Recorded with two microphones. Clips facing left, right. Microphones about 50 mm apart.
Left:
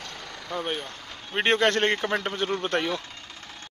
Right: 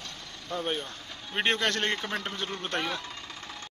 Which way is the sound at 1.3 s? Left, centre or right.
Centre.